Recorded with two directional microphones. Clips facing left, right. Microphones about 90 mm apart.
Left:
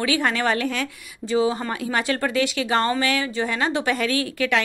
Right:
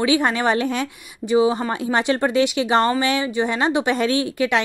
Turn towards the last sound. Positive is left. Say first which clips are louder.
# right 3 dB
turn(degrees=-20)  # may be behind; listen again after turning